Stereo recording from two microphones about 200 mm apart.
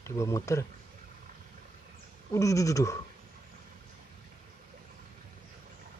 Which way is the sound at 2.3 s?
15° left (ahead or behind).